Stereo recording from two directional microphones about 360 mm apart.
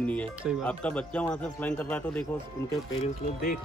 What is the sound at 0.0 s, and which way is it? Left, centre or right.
Speech, centre.